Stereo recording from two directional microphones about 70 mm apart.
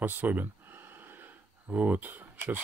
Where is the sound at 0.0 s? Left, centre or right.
Right.